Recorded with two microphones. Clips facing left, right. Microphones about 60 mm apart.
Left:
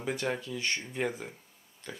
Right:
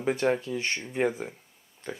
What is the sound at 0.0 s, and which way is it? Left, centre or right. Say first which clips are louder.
Speech: right 7 dB; right.